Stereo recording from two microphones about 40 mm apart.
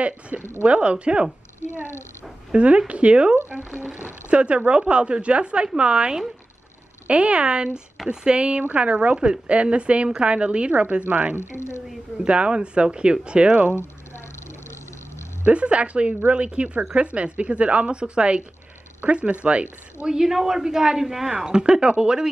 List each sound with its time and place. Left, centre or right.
0.3 s speech: right
0.7 s a woman's voice: right
2.5 s a woman's voice: right
7.1 s a woman's voice: right
11.3 s speech: left
12.3 s a woman's voice: right
15.4 s a woman's voice: right
20.1 s a man's voice: centre
21.5 s a woman's voice: centre